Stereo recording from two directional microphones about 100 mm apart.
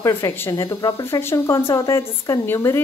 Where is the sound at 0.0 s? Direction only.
25° left (ahead or behind).